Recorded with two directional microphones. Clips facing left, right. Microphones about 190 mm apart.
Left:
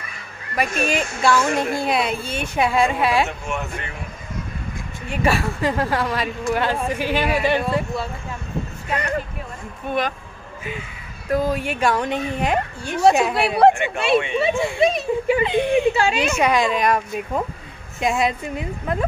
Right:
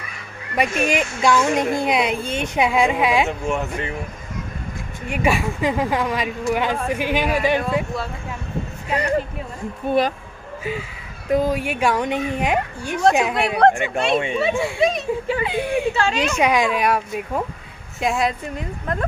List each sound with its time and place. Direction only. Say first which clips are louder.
0.6 s speech: right 2 dB; 15° right (ahead or behind)
3.3 s speech: right 5 dB; 30° right (ahead or behind)
5.1 s speech: even; 10° right (ahead or behind)
8.9 s a woman's voice: right 3 dB; 30° right (ahead or behind)
11.2 s speech: right 2 dB; 15° right (ahead or behind)
13.3 s speech: left 1 dB; 5° left (ahead or behind)
15.9 s a woman's voice: left 1 dB; 10° left (ahead or behind)
16.3 s speech: right 2 dB; 10° right (ahead or behind); by 19.0 s 5° left (ahead or behind)